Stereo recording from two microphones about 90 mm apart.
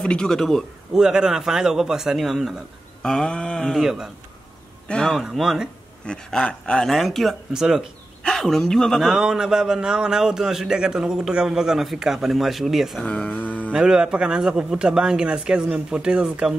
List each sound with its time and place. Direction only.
0.0 s a man's voice: 10° left (ahead or behind)
3.0 s a man's voice: 5° left (ahead or behind)
5.2 s a man's voice: 5° right (ahead or behind)
6.0 s a man's voice: 10° left (ahead or behind)
8.2 s a man's voice: 5° left (ahead or behind)
13.0 s a sound: 10° left (ahead or behind)
13.7 s speech: 10° right (ahead or behind)